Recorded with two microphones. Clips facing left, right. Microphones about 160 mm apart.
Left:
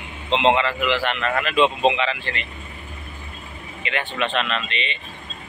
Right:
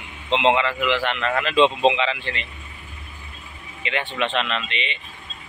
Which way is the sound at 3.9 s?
20° right (ahead or behind).